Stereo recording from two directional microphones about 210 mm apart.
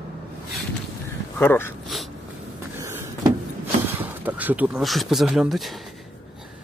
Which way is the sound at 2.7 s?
10° right (ahead or behind).